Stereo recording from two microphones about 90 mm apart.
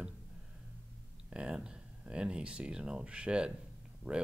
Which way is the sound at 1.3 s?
10° right (ahead or behind).